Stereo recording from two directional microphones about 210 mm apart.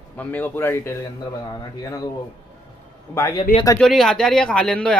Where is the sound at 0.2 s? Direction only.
10° left (ahead or behind).